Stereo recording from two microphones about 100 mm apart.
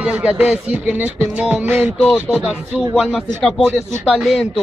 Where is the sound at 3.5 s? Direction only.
10° right (ahead or behind).